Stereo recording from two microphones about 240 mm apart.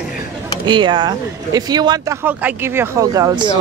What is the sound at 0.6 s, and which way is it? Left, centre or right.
Speech, centre.